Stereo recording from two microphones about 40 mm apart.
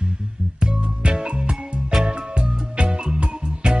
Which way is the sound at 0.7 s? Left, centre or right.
Right.